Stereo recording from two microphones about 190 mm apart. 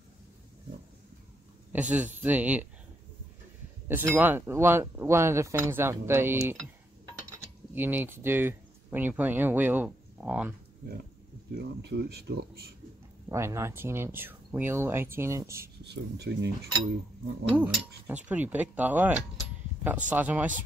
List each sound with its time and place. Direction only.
1.7 s speech: 10° right (ahead or behind)
3.9 s speech: 10° right (ahead or behind)
11.5 s speech: 60° right (ahead or behind)
13.3 s speech: 15° right (ahead or behind)
15.8 s speech: 60° right (ahead or behind)
17.6 s speech: 10° right (ahead or behind)